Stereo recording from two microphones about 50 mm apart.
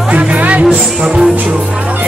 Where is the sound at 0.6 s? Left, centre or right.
Centre.